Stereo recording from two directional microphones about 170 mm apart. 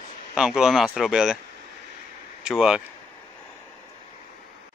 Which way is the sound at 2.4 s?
5° right (ahead or behind).